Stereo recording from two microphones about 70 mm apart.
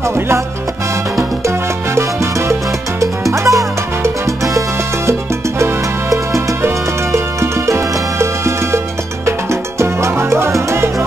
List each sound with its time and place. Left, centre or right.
3.0 s music: right
5.6 s music: right